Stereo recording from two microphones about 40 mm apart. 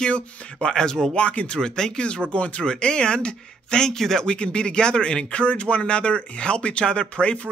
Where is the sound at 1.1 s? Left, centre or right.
Left.